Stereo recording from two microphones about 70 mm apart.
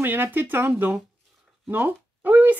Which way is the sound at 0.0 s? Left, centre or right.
Right.